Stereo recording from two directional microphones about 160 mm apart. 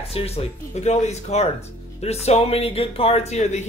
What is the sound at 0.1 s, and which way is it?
Speech, 40° left (ahead or behind).